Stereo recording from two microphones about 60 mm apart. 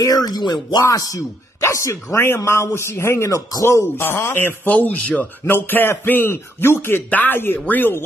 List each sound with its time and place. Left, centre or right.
0.0 s speech: left
1.6 s speech: left
2.1 s speech: left
3.3 s speech: left
3.6 s speech: left
5.5 s speech: left
7.1 s speech: left